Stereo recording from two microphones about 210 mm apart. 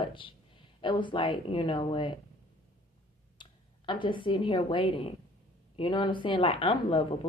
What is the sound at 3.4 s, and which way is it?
A woman's voice, 25° left (ahead or behind).